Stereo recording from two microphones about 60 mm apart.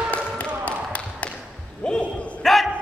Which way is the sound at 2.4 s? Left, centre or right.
Centre.